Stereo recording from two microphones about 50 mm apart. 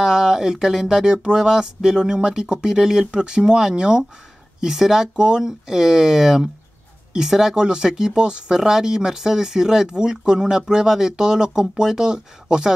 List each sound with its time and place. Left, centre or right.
0.0 s speech: centre